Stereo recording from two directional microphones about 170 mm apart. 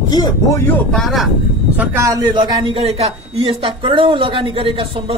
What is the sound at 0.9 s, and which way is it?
A man's voice, centre (ahead or behind).